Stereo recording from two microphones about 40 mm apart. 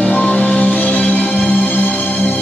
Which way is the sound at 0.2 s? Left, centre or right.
Left.